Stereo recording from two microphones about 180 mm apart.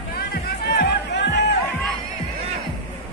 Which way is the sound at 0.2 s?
60° left (ahead or behind).